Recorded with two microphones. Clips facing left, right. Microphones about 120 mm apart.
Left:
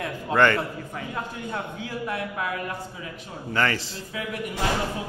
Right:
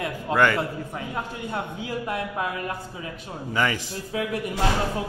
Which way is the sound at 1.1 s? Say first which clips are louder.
Right 1 dB; 20° right (ahead or behind).